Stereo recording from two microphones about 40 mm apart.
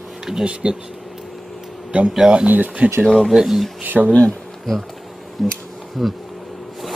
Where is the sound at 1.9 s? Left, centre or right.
Right.